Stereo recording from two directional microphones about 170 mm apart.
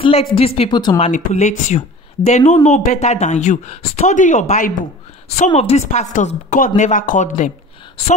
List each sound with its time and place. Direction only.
0.0 s speech: 35° left (ahead or behind)
1.0 s speech: 40° left (ahead or behind)
5.5 s speech: 35° left (ahead or behind)